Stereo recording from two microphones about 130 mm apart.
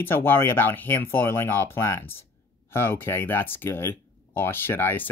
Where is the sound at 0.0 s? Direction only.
15° left (ahead or behind).